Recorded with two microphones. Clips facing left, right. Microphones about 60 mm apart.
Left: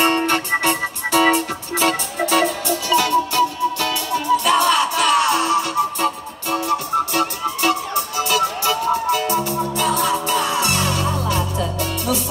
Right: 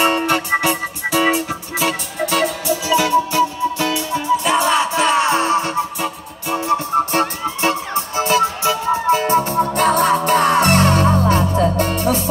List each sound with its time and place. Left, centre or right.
0.0 s music: centre
2.6 s music: centre; by 5.7 s right
6.5 s emergency vehicle: right